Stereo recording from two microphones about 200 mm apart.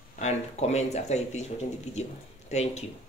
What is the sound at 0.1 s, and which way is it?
Speech, 35° left (ahead or behind).